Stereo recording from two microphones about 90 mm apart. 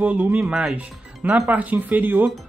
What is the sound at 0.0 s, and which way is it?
Speech, 20° right (ahead or behind).